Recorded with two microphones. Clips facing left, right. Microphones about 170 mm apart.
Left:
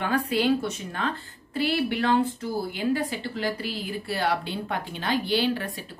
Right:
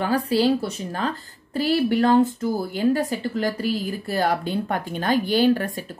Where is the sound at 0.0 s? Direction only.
35° right (ahead or behind).